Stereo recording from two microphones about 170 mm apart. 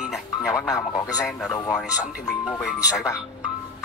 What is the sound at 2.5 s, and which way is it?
Speech, 20° left (ahead or behind).